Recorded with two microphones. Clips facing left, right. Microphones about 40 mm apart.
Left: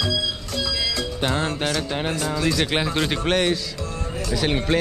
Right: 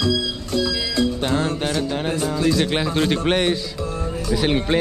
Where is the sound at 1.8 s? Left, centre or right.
Centre.